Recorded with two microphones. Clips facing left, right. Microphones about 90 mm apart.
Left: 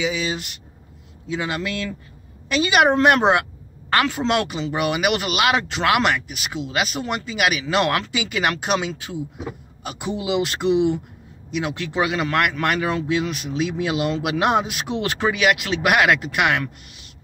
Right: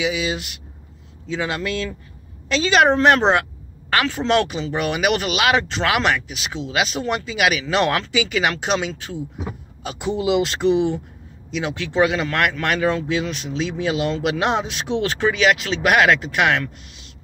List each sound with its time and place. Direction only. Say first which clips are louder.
0.0 s speech: right 1 dB; 10° right (ahead or behind)
1.2 s speech: right 1 dB; 10° left (ahead or behind)